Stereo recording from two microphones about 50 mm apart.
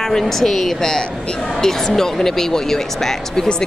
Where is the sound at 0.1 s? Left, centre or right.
Centre.